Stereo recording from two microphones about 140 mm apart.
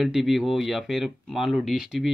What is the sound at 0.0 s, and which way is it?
Speech, centre (ahead or behind).